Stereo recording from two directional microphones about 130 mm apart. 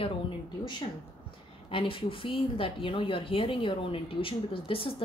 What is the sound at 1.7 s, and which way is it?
Speech, 40° left (ahead or behind).